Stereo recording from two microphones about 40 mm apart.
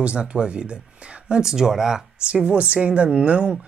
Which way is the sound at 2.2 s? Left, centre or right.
Right.